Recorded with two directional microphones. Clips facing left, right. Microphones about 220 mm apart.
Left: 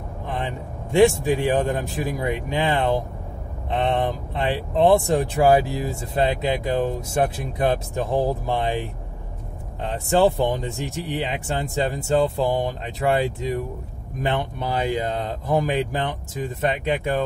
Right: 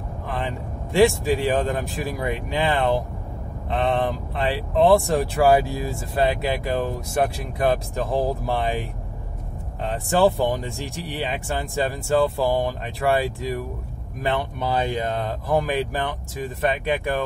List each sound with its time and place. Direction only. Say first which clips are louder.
0.9 s speech: left 1 dB; 20° left (ahead or behind)
10.0 s speech: left 1 dB; 20° left (ahead or behind)